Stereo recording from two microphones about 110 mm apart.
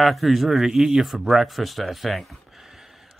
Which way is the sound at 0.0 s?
Centre (ahead or behind).